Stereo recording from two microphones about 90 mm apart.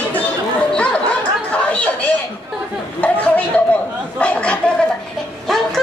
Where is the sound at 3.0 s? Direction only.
15° left (ahead or behind).